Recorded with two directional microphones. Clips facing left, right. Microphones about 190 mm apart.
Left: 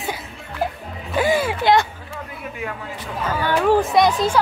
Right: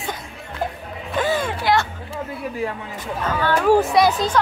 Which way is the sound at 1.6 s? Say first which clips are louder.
Left 3 dB; 20° left (ahead or behind).